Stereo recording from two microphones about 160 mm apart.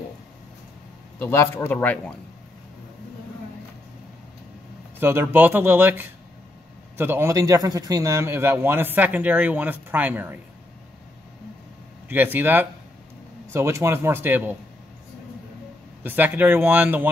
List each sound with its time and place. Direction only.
1.2 s speech: 15° left (ahead or behind)
5.0 s a man's voice: 15° right (ahead or behind)
12.1 s a man's voice: 10° right (ahead or behind)
16.0 s a man's voice: 10° right (ahead or behind)